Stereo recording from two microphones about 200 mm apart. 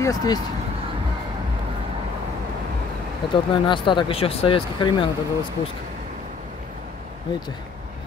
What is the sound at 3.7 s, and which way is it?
Speech, 25° left (ahead or behind).